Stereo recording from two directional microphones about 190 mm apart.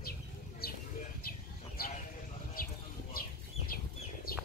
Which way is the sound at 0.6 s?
55° left (ahead or behind).